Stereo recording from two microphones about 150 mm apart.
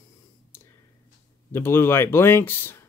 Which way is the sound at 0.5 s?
15° left (ahead or behind).